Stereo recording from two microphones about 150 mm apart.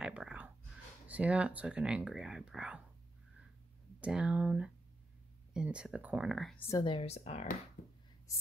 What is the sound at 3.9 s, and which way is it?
Speech, 10° right (ahead or behind).